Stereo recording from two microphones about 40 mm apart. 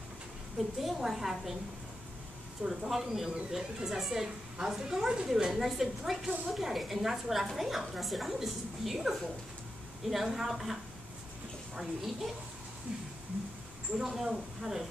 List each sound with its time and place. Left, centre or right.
0.7 s a woman's voice: centre
2.6 s speech: centre
2.9 s a woman's voice: centre
14.1 s a woman's voice: centre